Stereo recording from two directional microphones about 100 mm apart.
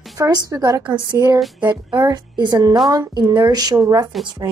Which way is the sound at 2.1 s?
40° right (ahead or behind).